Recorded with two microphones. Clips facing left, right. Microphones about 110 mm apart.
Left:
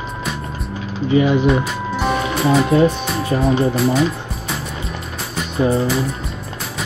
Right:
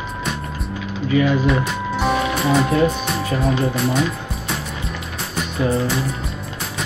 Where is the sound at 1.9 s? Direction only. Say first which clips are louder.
Even; centre (ahead or behind).